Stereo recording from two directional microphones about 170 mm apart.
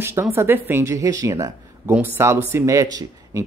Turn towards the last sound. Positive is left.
turn(degrees=-20)  # may be behind; listen again after turning